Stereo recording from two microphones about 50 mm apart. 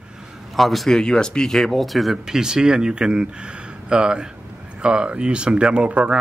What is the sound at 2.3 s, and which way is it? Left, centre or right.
Speech, centre.